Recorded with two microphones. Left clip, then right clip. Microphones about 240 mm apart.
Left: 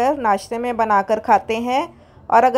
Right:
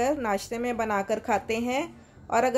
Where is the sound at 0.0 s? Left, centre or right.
Centre.